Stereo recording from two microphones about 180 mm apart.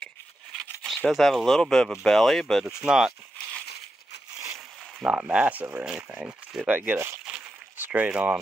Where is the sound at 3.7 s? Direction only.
70° left (ahead or behind).